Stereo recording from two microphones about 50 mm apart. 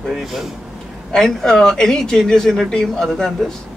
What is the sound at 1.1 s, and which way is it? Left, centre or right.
Speech, centre.